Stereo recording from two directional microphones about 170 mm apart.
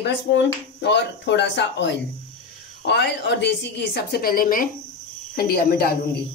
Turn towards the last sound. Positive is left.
turn(degrees=65)  # may be behind; listen again after turning